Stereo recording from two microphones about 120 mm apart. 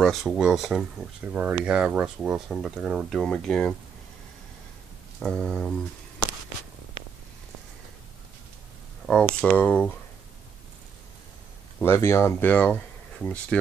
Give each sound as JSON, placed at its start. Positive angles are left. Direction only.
{"t": 0.0, "sound": "speech", "side_deg": 0}
{"t": 5.2, "sound": "speech", "side_deg": 0}
{"t": 9.0, "sound": "speech", "side_deg": 5}
{"t": 11.8, "sound": "speech", "side_deg": 20}